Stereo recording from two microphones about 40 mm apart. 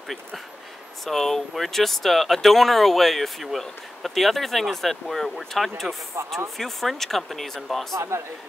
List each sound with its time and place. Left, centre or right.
1.0 s speech: centre
8.1 s speech: right